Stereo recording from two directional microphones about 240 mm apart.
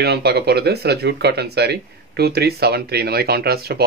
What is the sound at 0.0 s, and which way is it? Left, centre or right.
Speech, right.